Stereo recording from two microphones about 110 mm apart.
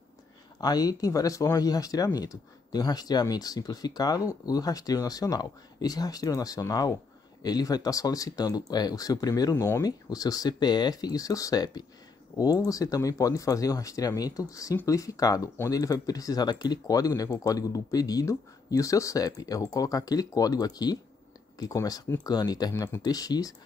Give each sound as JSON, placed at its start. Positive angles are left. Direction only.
{"t": 0.6, "sound": "speech", "side_deg": 35}